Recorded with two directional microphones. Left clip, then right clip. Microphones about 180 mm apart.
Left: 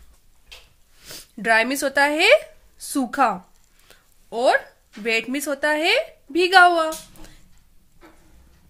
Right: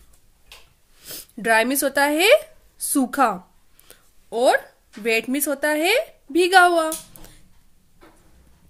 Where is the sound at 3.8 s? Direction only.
20° right (ahead or behind).